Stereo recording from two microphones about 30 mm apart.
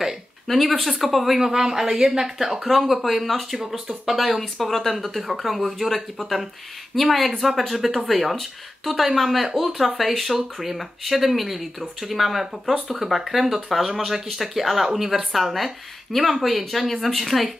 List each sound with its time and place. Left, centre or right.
0.5 s speech: centre
1.4 s speech: centre
3.5 s speech: centre
4.0 s speech: centre